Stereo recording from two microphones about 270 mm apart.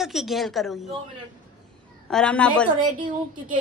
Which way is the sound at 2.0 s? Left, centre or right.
Centre.